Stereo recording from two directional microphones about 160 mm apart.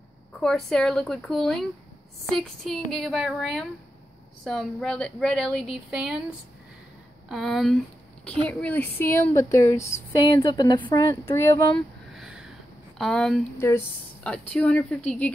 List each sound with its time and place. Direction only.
0.4 s a woman's voice: 5° left (ahead or behind)
7.2 s a woman's voice: centre (ahead or behind); by 11.8 s 15° left (ahead or behind)
12.1 s a sound: 5° right (ahead or behind)
12.9 s a woman's voice: 5° left (ahead or behind)
13.6 s speech: 15° left (ahead or behind)